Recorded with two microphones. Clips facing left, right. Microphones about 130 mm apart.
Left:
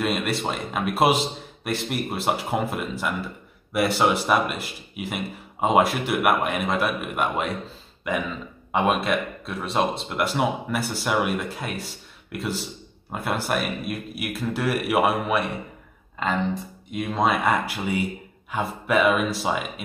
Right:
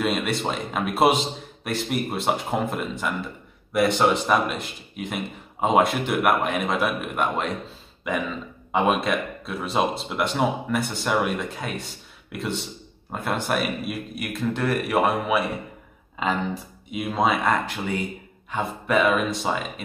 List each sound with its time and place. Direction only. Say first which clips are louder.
0.0 s a man's voice: right 1 dB; centre (ahead or behind)
17.5 s a man's voice: even; 10° left (ahead or behind)